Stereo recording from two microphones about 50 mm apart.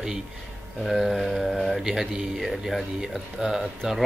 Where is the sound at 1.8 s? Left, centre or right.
Centre.